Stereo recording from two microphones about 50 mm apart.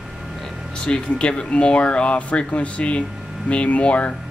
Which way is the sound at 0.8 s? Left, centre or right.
Left.